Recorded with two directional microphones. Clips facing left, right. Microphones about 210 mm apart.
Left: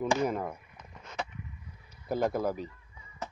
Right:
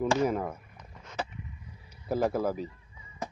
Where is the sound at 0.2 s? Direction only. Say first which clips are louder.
Right 2 dB; 5° right (ahead or behind).